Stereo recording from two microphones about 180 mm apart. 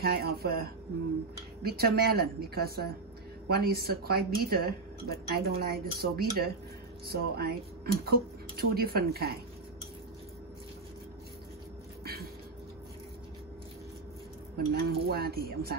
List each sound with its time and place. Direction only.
0.0 s speech: 60° right (ahead or behind)
12.0 s a sound: 60° right (ahead or behind)
14.7 s speech: 60° right (ahead or behind)